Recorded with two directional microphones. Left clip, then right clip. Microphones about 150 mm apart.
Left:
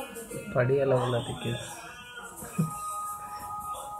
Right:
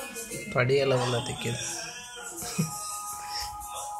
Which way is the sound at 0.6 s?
15° right (ahead or behind).